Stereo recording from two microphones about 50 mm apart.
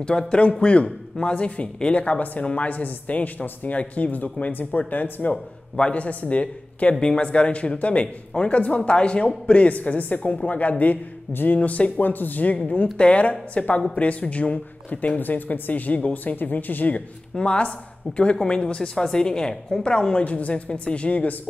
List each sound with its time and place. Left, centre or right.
0.3 s a woman's voice: left
5.3 s a woman's voice: left
17.4 s a woman's voice: left